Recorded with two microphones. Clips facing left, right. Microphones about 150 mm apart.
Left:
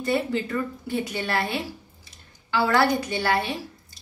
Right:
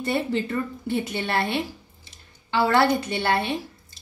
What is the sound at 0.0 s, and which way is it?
A woman's voice, 25° right (ahead or behind).